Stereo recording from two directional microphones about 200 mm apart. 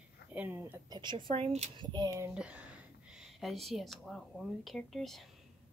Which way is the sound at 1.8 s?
20° right (ahead or behind).